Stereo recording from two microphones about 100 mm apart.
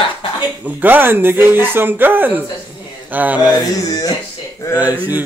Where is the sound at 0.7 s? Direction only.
20° right (ahead or behind).